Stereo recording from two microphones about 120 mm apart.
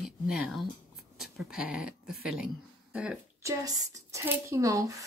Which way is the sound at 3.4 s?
25° right (ahead or behind).